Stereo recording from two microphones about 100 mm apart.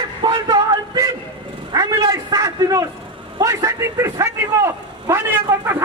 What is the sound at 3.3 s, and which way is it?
A man's voice, 35° right (ahead or behind).